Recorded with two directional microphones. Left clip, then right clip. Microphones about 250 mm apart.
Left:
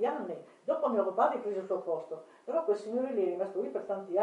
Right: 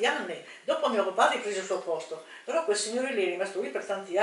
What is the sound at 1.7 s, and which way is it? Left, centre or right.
Speech, left.